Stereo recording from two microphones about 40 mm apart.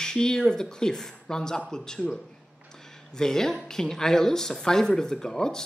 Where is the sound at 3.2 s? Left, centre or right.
Centre.